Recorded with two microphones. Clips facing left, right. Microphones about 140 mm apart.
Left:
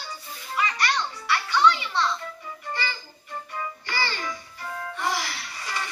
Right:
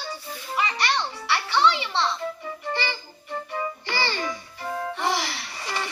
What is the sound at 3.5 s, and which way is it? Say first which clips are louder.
Music: right 3 dB; 20° right (ahead or behind).